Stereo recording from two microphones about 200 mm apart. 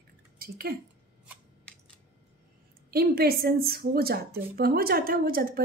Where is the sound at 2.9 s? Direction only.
50° right (ahead or behind).